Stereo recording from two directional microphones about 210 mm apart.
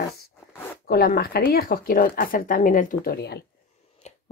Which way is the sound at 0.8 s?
45° left (ahead or behind).